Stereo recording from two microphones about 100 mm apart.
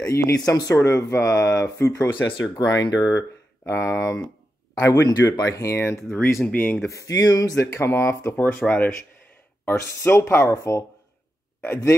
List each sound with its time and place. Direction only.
0.0 s speech: 30° left (ahead or behind)
2.5 s speech: 45° left (ahead or behind); by 6.9 s 15° left (ahead or behind)
6.9 s speech: 35° left (ahead or behind)